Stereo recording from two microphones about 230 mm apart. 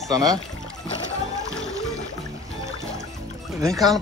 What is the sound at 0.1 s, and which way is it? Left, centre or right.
Speech, centre.